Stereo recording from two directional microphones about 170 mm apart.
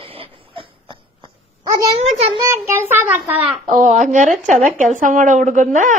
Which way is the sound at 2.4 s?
15° right (ahead or behind).